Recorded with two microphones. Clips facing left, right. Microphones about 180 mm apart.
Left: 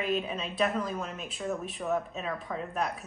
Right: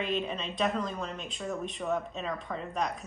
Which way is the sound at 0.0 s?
5° left (ahead or behind).